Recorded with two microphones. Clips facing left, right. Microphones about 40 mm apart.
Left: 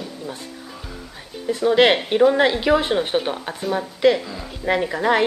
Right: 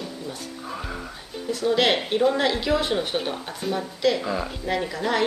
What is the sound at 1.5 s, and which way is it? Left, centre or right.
A woman's voice, left.